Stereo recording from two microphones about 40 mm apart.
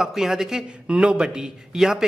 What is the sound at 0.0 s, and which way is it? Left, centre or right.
A man's voice, centre.